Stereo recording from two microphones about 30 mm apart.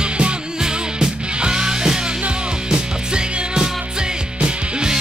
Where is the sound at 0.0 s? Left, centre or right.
Right.